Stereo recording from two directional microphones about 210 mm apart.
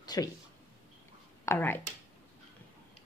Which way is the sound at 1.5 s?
10° left (ahead or behind).